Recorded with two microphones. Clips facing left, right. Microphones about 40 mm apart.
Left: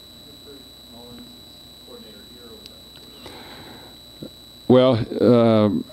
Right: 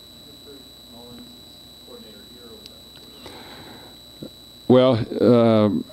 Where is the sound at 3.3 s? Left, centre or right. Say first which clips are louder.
Even; centre.